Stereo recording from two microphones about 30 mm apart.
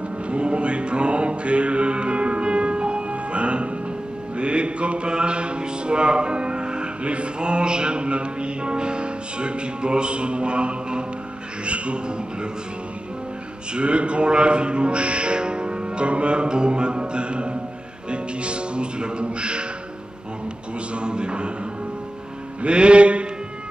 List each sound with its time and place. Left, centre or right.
0.3 s music: right
13.7 s music: right
20.9 s music: right
22.6 s music: right